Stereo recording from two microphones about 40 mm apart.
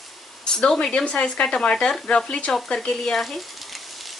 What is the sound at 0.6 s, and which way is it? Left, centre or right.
Speech, centre.